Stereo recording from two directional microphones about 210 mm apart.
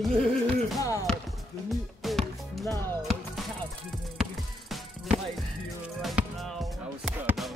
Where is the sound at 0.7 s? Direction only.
15° left (ahead or behind).